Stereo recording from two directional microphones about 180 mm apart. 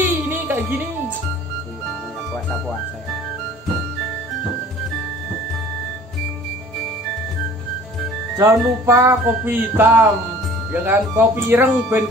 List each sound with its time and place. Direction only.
0.0 s music: 10° right (ahead or behind)
8.4 s music: 15° right (ahead or behind)